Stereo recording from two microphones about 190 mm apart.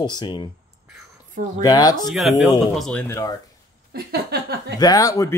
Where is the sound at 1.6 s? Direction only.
20° left (ahead or behind).